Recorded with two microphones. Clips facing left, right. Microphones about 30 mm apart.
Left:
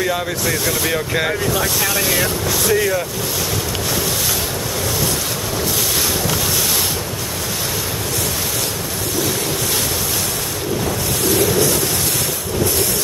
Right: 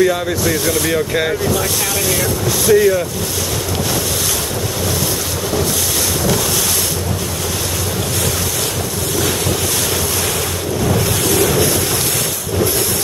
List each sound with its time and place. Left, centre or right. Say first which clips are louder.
0.0 s speech: right 5 dB; centre